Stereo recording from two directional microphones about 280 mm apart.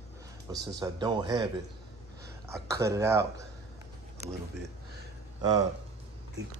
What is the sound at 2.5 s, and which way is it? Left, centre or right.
Speech, centre.